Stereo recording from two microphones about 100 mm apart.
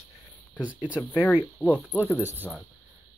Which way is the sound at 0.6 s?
15° right (ahead or behind).